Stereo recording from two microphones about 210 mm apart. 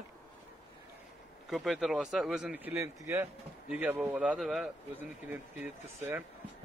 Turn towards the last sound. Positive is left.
turn(degrees=-10)  # may be behind; listen again after turning